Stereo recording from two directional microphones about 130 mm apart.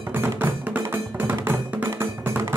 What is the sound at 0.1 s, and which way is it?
Music, 15° right (ahead or behind).